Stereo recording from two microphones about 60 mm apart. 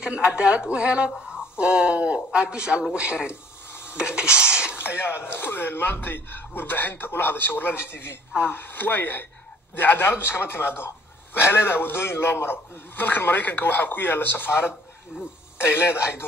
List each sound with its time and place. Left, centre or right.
0.0 s speech: centre
3.8 s filing: centre
4.7 s a man's voice: left